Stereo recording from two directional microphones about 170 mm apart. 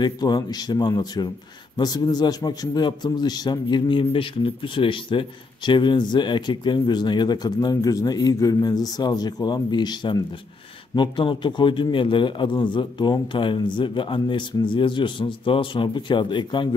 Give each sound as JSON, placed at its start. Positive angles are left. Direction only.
{"t": 0.0, "sound": "a man's voice", "side_deg": 25}